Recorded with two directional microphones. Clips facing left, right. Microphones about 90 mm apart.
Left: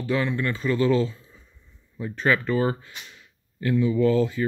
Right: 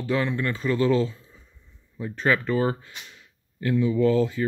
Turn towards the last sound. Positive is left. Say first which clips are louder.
# even
turn(degrees=-25)  # may be behind; listen again after turning